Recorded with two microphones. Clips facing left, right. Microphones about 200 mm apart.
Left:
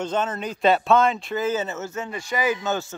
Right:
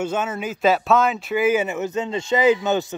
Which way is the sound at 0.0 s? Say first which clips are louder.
Right 1 dB; 10° right (ahead or behind).